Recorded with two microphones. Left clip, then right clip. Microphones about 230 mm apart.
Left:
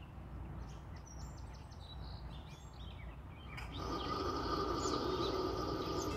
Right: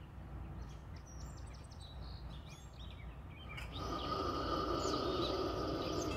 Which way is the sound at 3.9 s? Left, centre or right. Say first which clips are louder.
Even; centre.